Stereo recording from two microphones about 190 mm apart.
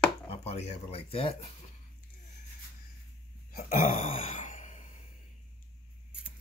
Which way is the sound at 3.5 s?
45° left (ahead or behind).